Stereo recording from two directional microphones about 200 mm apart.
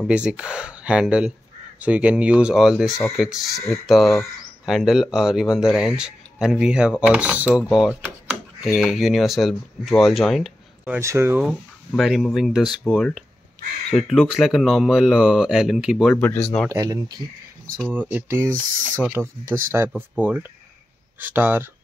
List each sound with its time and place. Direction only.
0.0 s speech: 5° right (ahead or behind)
8.6 s speech: centre (ahead or behind)
11.0 s speech: 15° right (ahead or behind)
11.9 s speech: centre (ahead or behind)
16.6 s speech: 15° right (ahead or behind)